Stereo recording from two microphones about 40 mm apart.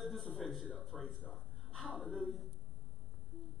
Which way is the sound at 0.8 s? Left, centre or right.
Centre.